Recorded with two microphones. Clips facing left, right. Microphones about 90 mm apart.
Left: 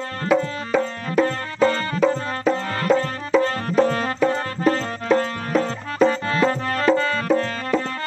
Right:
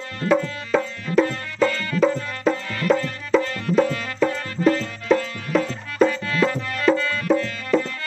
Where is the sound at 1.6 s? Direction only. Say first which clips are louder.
Left 1 dB; 35° left (ahead or behind).